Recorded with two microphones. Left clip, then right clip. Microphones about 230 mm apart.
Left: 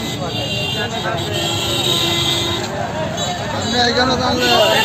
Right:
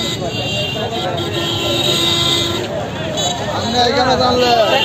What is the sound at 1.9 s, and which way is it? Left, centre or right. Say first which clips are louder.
Music: right 2 dB; right.